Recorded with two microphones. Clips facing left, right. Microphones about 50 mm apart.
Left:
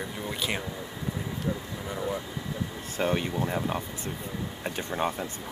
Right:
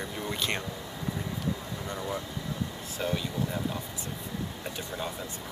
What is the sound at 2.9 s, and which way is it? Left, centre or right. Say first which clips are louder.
Speech: left 4 dB; left.